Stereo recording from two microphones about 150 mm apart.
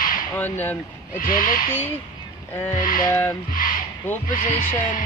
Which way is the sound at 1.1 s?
65° left (ahead or behind).